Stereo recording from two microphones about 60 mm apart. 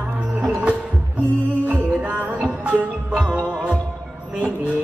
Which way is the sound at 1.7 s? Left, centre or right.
Right.